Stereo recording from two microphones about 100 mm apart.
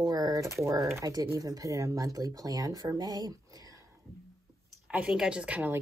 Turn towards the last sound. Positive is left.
turn(degrees=-15)  # may be behind; listen again after turning